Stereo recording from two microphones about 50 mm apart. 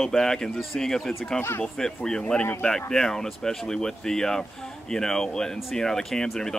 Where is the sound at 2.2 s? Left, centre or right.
Left.